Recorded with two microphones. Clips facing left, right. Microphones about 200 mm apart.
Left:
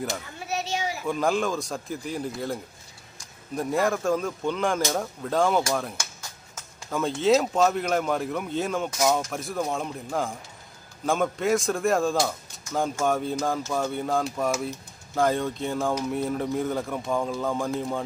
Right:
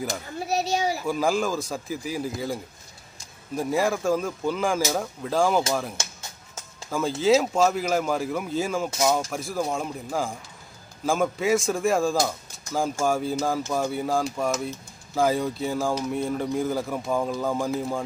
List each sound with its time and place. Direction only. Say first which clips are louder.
0.4 s a child's voice: right 6 dB; 35° right (ahead or behind)
1.0 s speech: right 1 dB; centre (ahead or behind)